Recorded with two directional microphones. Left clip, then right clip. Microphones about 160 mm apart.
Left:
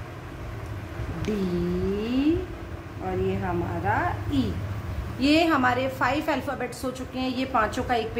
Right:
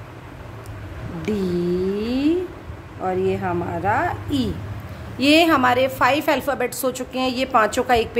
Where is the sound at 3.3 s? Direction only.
90° right.